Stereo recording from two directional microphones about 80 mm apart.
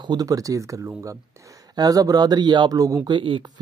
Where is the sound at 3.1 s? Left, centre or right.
Right.